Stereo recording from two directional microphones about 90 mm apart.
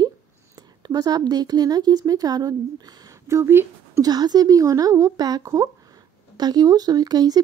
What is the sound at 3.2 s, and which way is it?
Speech, 30° right (ahead or behind).